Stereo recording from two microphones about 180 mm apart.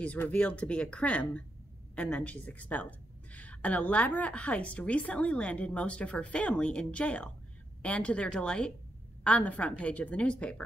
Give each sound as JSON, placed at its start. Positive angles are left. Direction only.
{"t": 0.0, "sound": "a woman's voice", "side_deg": 10}